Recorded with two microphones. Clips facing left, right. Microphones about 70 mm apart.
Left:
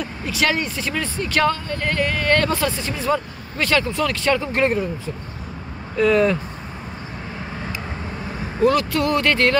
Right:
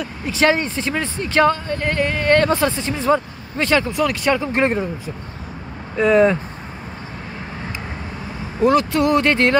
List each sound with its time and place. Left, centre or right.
0.2 s a woman's voice: right
8.6 s a woman's voice: right